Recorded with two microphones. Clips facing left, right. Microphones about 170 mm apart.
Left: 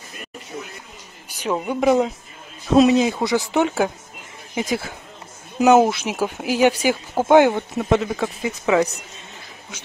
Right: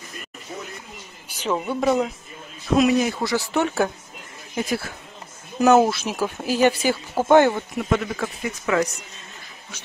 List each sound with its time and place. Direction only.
1.4 s speech: 10° left (ahead or behind)
2.7 s speech: 25° left (ahead or behind)
5.6 s speech: 15° left (ahead or behind)
7.7 s speech: 25° left (ahead or behind)